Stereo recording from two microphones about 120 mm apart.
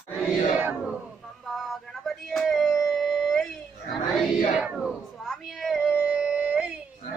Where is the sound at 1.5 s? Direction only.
Centre (ahead or behind).